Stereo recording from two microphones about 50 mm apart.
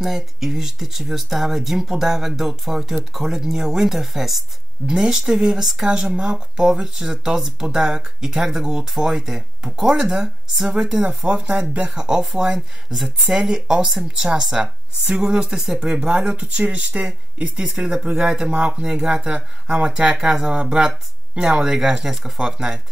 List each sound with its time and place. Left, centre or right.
0.0 s speech: centre
13.4 s speech: centre